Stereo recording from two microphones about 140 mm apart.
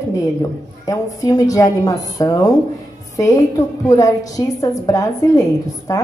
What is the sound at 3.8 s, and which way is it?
A woman's voice, 25° left (ahead or behind).